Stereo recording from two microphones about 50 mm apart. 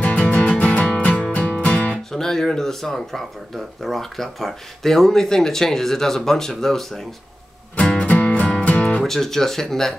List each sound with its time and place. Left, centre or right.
0.0 s music: left
2.0 s speech: centre
7.7 s music: left
9.0 s speech: centre